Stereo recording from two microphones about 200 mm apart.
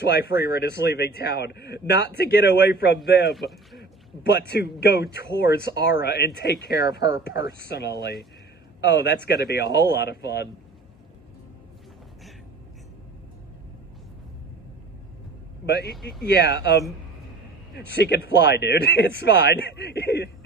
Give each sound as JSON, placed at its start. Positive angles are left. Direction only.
{"t": 0.0, "sound": "speech", "side_deg": 55}
{"t": 3.3, "sound": "speech", "side_deg": 0}
{"t": 4.2, "sound": "speech", "side_deg": 55}
{"t": 15.6, "sound": "speech", "side_deg": 55}